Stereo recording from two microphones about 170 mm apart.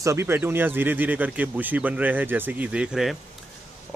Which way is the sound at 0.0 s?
15° right (ahead or behind).